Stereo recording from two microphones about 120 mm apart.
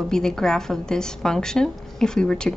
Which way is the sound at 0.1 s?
5° left (ahead or behind).